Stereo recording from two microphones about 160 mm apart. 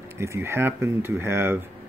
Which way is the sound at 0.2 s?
15° right (ahead or behind).